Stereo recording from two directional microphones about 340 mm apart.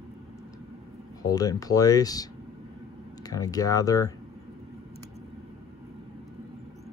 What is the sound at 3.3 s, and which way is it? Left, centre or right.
Speech, centre.